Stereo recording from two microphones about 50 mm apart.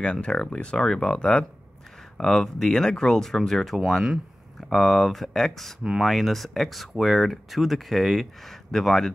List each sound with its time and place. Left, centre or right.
0.0 s speech: centre
0.7 s speech: centre
2.1 s speech: centre